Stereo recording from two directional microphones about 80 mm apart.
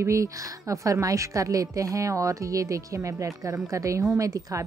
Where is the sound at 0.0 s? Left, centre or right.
Right.